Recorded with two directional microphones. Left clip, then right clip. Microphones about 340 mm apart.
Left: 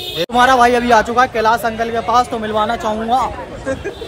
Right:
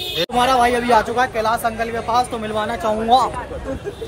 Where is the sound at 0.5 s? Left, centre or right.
Centre; by 2.4 s left.